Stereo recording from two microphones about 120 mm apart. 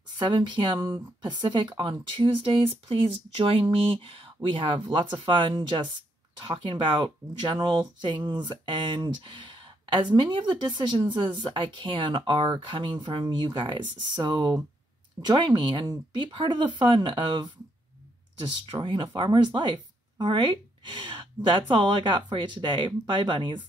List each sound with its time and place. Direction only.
0.2 s speech: 40° right (ahead or behind)
0.7 s speech: 30° right (ahead or behind)